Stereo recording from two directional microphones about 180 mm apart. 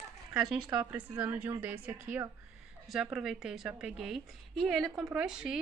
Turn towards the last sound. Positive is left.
turn(degrees=-5)  # may be behind; listen again after turning